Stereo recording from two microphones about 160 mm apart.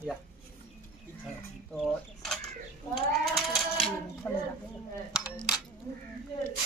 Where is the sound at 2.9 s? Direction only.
Centre (ahead or behind).